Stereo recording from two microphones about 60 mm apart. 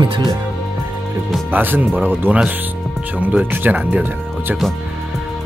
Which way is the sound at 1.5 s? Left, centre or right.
Right.